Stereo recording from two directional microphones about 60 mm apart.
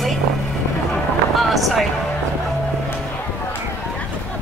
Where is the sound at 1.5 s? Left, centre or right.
Centre.